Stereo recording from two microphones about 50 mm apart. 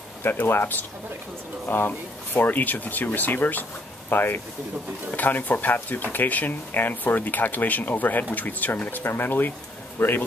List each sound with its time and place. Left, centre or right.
0.2 s speech: left
1.9 s speech: left